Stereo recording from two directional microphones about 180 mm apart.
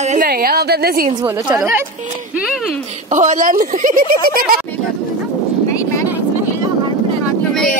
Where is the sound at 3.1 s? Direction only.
45° right (ahead or behind).